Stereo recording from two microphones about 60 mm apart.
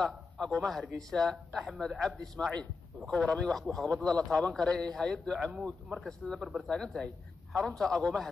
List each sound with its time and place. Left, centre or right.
0.0 s a man's voice: centre